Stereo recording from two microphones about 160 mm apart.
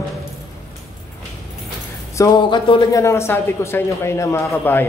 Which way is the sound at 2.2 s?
25° left (ahead or behind).